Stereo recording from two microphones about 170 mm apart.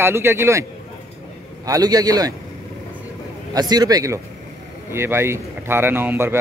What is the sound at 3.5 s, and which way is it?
A man's voice, 25° right (ahead or behind).